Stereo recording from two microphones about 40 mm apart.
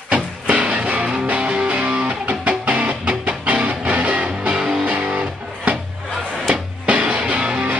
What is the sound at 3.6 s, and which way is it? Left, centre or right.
Music, right.